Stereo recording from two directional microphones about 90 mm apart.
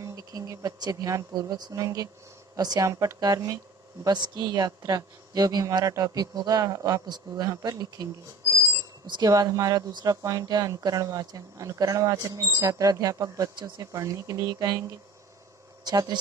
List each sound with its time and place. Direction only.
0.0 s speech: 40° right (ahead or behind)
8.5 s alarm clock: 35° right (ahead or behind)
9.0 s speech: 60° right (ahead or behind)
9.3 s speech: 40° right (ahead or behind)
15.8 s speech: 50° right (ahead or behind)